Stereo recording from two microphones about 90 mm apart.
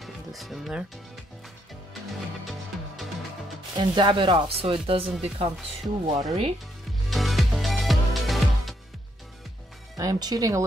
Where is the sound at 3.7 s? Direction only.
60° right (ahead or behind); by 4.7 s 80° right.